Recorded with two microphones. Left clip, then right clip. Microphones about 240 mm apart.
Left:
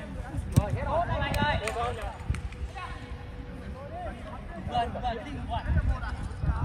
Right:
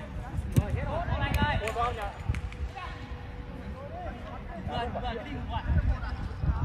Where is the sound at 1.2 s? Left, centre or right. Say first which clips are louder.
Left 2 dB; centre.